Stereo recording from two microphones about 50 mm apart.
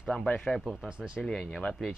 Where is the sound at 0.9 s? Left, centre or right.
Centre.